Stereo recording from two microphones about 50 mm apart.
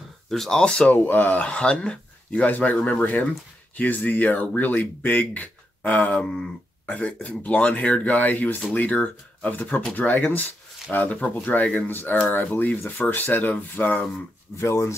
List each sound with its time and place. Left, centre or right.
0.3 s speech: centre
0.9 s speech: left
1.4 s speech: centre
14.6 s speech: left